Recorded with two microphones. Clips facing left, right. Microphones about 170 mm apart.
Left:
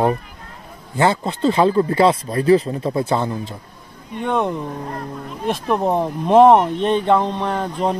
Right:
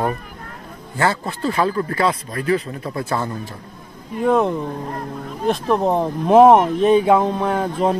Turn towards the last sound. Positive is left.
turn(degrees=-5)  # may be behind; listen again after turning